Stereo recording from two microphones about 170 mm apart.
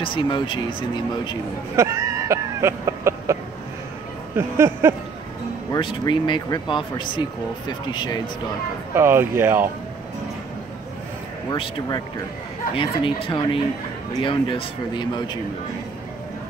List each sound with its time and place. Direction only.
0.0 s speech: 30° left (ahead or behind)
1.8 s speech: 15° right (ahead or behind)
4.4 s speech: 15° right (ahead or behind)
5.8 s speech: 30° left (ahead or behind)
8.9 s speech: 15° right (ahead or behind)
11.5 s speech: 30° left (ahead or behind)